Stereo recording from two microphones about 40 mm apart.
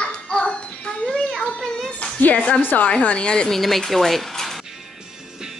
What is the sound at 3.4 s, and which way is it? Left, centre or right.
Speech, centre.